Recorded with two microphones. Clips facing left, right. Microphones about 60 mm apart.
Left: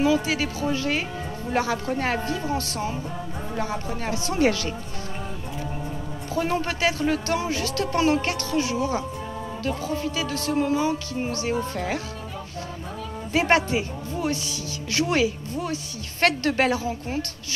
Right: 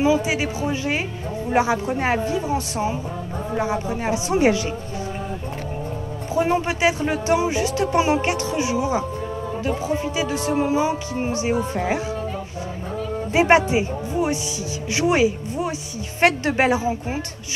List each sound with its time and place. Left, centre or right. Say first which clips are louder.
0.0 s a woman's voice: right 2 dB; centre
6.3 s a woman's voice: right 5 dB; centre
13.3 s speech: right 5 dB; centre